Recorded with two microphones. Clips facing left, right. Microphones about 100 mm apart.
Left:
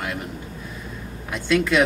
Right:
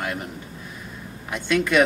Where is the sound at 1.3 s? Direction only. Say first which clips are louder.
Left 1 dB; centre (ahead or behind).